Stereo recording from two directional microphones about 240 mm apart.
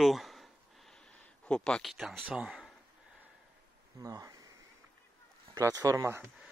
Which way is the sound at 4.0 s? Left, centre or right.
Centre.